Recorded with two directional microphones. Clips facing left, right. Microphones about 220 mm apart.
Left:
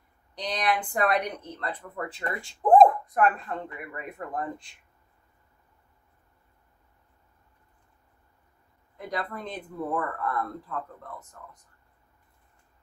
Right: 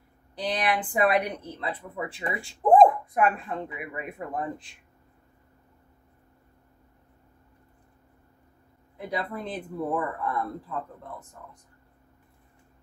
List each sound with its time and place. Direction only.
0.4 s speech: 5° right (ahead or behind)
8.9 s speech: 5° right (ahead or behind)